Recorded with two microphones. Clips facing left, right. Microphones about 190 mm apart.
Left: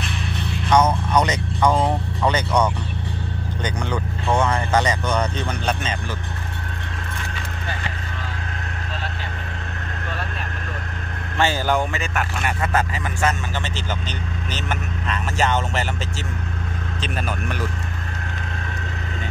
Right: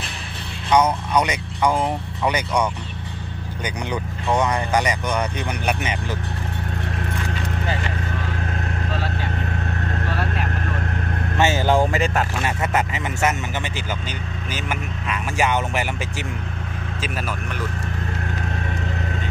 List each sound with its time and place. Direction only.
0.7 s speech: 10° right (ahead or behind)
11.3 s speech: 20° right (ahead or behind)
11.8 s speech: 35° right (ahead or behind); by 13.4 s 20° right (ahead or behind)
14.5 s speech: 10° right (ahead or behind)